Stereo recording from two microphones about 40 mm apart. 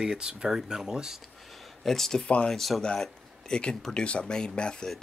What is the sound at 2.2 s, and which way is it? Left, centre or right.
Speech, left.